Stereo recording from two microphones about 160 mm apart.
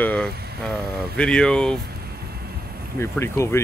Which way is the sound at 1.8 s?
75° right (ahead or behind).